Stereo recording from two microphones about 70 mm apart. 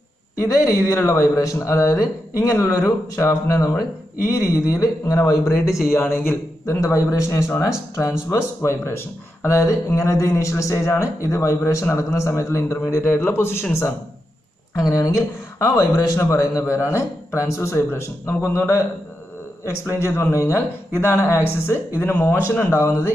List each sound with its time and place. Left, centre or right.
0.5 s speech: left
5.9 s speech: left
9.9 s speech: left
14.8 s speech: left
20.0 s speech: left
22.0 s speech: left